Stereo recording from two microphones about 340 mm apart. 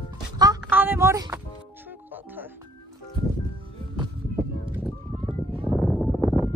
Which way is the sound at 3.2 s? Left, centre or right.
Centre.